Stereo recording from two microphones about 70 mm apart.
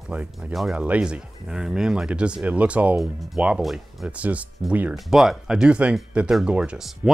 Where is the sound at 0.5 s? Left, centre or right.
Centre.